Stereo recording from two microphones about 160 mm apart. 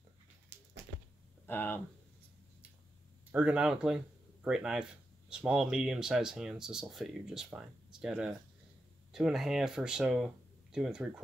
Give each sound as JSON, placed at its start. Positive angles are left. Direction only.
{"t": 0.5, "sound": "a sound", "side_deg": -90}
{"t": 1.4, "sound": "speech", "side_deg": 10}
{"t": 3.3, "sound": "speech", "side_deg": -10}